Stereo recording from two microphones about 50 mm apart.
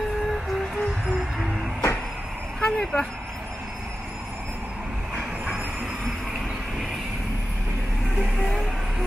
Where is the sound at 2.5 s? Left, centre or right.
Centre.